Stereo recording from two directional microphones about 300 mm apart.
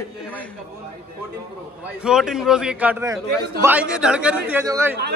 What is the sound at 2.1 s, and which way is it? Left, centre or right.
A man's voice, centre.